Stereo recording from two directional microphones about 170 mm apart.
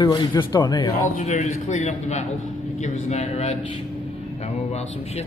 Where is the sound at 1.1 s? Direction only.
45° left (ahead or behind).